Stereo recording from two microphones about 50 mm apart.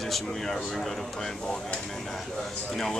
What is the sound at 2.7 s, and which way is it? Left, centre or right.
Speech, centre.